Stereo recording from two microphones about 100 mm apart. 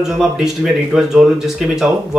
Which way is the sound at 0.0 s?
5° right (ahead or behind).